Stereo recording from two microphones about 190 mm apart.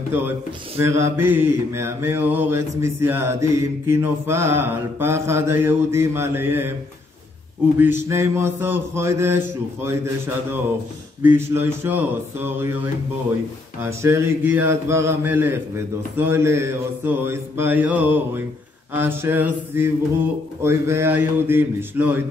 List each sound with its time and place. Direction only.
0.1 s mantra: 10° right (ahead or behind)
7.8 s mantra: 10° right (ahead or behind)